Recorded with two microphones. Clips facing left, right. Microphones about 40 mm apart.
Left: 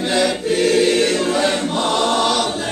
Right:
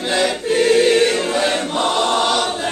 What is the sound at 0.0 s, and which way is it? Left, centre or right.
Choir, centre.